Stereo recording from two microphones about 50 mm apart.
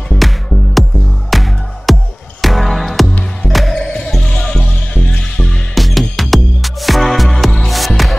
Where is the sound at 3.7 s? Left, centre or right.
Centre.